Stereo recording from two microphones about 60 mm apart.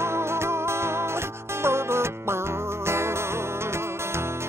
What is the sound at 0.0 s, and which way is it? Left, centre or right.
Music, right.